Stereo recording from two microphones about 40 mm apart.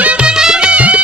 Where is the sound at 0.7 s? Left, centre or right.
Right.